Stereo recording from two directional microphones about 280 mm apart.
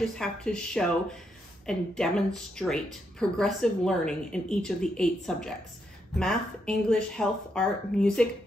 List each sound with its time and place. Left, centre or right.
0.0 s a woman's voice: centre